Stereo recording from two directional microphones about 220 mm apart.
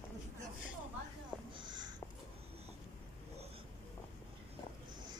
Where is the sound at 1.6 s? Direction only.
20° right (ahead or behind).